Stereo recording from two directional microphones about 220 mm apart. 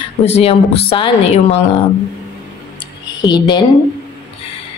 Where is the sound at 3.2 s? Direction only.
20° left (ahead or behind).